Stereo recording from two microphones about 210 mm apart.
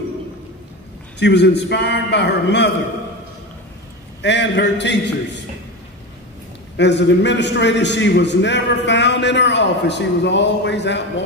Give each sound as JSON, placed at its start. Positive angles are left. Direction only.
{"t": 1.2, "sound": "a man's voice", "side_deg": 50}
{"t": 4.2, "sound": "a man's voice", "side_deg": 55}
{"t": 6.8, "sound": "a man's voice", "side_deg": 55}